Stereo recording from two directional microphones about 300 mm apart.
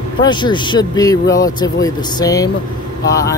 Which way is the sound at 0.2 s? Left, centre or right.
Centre.